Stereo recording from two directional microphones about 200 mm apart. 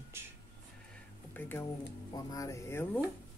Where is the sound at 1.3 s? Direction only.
10° left (ahead or behind).